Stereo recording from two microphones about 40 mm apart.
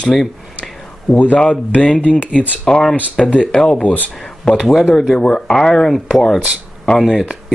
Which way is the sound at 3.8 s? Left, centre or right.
Left.